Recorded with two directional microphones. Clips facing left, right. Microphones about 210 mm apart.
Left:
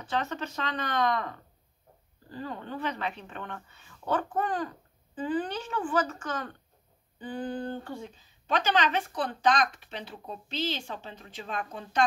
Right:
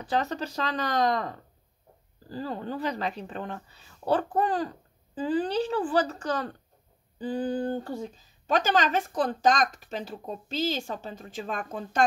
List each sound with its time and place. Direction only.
0.0 s speech: 35° right (ahead or behind)